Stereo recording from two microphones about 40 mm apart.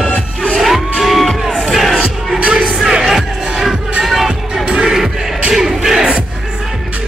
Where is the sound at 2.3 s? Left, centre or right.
Right.